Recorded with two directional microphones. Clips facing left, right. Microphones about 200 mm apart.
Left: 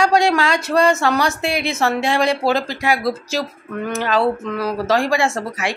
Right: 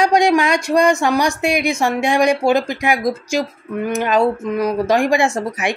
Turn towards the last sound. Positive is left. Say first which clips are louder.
# right 2 dB
turn(degrees=-20)  # may be behind; listen again after turning